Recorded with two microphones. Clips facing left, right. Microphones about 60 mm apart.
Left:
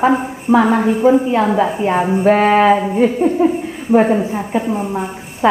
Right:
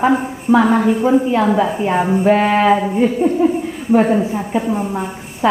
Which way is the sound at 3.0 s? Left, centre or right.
Centre.